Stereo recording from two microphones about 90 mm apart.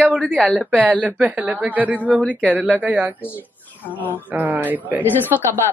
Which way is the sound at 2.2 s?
15° left (ahead or behind).